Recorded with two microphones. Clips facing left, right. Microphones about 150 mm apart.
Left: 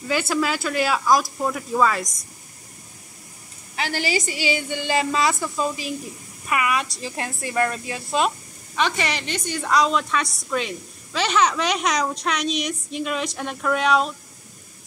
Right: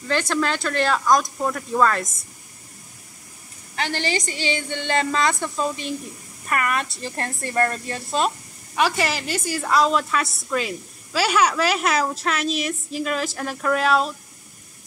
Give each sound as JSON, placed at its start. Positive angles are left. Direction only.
{"t": 0.1, "sound": "a woman's voice", "side_deg": 10}
{"t": 3.7, "sound": "a woman's voice", "side_deg": 10}